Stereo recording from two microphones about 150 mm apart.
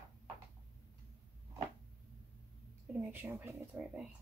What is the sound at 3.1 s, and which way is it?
Speech, 15° right (ahead or behind).